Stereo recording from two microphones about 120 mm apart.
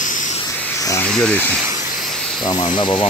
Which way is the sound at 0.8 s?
30° left (ahead or behind).